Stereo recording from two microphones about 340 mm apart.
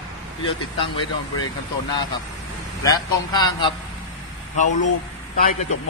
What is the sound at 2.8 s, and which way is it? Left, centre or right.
Speech, centre.